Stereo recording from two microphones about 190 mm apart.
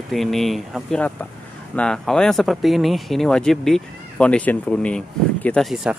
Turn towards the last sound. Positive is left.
turn(degrees=0)  # may be behind; listen again after turning